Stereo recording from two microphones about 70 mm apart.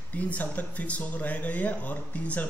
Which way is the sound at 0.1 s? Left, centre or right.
Left.